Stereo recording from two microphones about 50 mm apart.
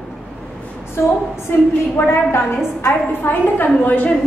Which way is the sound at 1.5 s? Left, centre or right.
Left.